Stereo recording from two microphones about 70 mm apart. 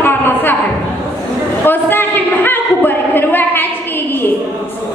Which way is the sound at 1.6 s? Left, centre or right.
Left.